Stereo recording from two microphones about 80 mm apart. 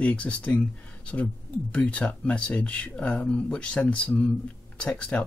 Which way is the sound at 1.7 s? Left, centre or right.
Centre.